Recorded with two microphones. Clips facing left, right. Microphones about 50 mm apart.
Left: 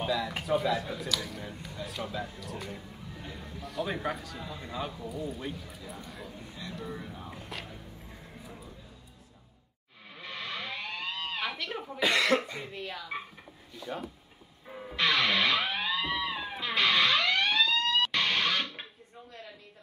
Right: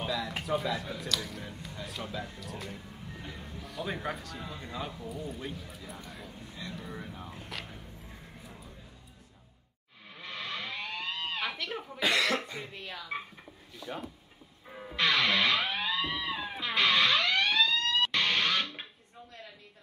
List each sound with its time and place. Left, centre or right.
0.0 s speech: centre
7.2 s a sound: centre
8.1 s music: centre
10.1 s a sound: centre
12.0 s cough: left
12.4 s speech: centre
14.7 s music: centre